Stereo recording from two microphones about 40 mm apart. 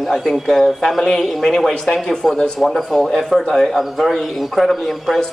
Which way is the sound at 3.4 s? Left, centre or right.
Centre.